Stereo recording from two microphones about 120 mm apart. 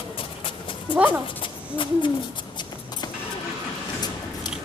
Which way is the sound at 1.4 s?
45° left (ahead or behind).